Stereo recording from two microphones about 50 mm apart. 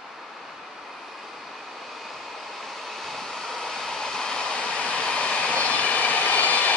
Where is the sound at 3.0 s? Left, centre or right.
Centre.